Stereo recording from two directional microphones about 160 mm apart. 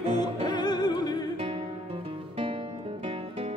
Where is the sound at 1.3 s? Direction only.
40° right (ahead or behind).